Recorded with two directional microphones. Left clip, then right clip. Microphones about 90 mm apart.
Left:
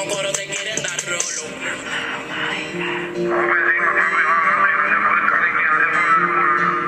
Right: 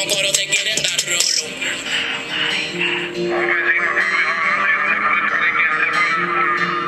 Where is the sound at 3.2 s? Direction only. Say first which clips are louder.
Left 1 dB; 35° right (ahead or behind).